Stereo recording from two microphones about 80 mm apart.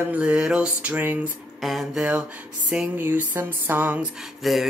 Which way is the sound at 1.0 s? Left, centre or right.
Right.